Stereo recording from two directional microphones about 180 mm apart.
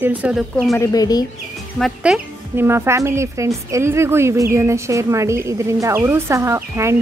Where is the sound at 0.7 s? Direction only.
20° left (ahead or behind).